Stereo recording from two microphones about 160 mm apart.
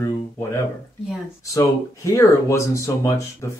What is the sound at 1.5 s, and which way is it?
Speech, 20° left (ahead or behind).